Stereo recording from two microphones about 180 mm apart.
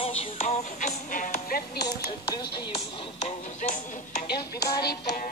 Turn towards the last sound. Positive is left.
turn(degrees=45)  # may be behind; listen again after turning